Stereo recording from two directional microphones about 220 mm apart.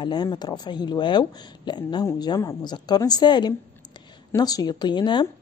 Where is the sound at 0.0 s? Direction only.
20° left (ahead or behind).